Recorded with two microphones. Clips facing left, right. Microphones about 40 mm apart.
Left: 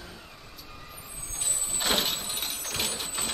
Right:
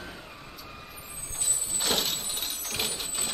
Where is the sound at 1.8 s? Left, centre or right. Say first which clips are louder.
Left 2 dB; centre.